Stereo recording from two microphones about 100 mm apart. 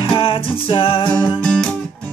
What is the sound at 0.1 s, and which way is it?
Music, 65° left (ahead or behind).